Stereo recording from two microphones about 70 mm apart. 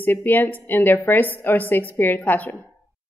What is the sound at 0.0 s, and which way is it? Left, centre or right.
A woman's voice, left.